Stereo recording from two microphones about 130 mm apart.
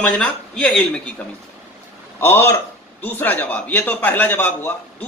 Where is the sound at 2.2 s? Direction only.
20° left (ahead or behind).